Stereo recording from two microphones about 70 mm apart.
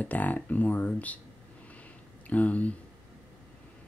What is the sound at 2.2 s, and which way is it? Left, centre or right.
Speech, left.